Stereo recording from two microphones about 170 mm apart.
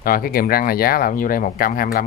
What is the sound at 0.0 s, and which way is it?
Speech, 60° left (ahead or behind).